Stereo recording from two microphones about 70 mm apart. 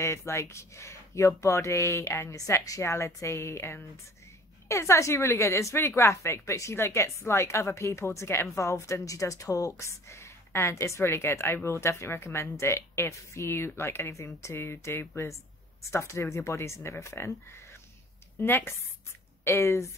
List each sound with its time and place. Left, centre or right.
0.0 s speech: left
18.4 s speech: left
19.4 s speech: left